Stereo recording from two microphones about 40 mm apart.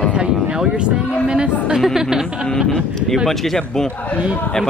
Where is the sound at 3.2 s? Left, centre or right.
Centre.